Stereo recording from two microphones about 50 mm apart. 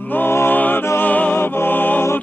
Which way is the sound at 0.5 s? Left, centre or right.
Left.